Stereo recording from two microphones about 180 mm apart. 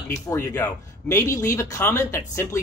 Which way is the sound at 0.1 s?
15° left (ahead or behind).